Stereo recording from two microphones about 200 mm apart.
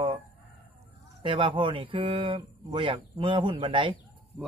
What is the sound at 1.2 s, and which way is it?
Speech, 25° right (ahead or behind).